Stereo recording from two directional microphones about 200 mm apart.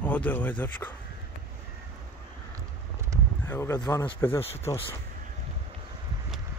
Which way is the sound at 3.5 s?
15° left (ahead or behind).